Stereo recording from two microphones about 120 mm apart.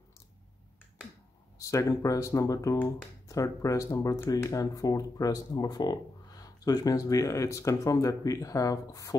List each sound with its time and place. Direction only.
1.6 s speech: 25° left (ahead or behind)